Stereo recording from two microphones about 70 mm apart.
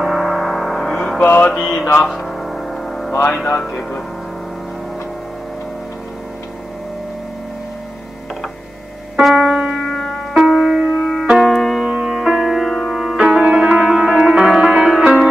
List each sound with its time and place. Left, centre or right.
0.0 s music: centre
1.2 s mantra: left
1.5 s mantra: centre
2.0 s a sound: centre
9.2 s music: centre
11.9 s music: centre
13.0 s music: centre